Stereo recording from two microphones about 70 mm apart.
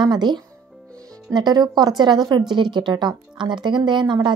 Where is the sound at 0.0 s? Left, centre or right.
Right.